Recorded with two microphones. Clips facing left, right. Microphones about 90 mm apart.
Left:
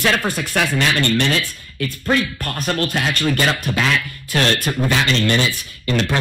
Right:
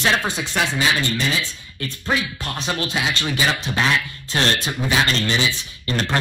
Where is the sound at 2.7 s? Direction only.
55° left (ahead or behind).